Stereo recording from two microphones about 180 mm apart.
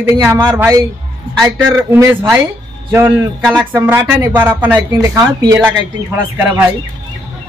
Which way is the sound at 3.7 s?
15° right (ahead or behind).